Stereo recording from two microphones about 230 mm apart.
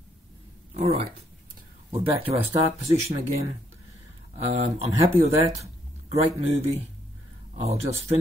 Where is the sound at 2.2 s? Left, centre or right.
Centre.